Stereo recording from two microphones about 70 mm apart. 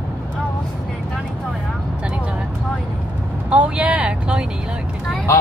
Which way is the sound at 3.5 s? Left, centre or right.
Centre.